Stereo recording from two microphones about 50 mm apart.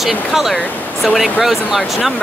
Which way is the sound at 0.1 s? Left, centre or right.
Centre.